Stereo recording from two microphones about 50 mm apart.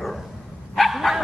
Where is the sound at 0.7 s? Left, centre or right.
Centre.